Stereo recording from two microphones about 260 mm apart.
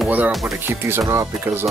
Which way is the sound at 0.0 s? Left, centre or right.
Centre.